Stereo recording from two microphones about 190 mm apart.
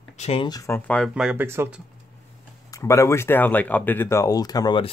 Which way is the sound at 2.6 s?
15° left (ahead or behind).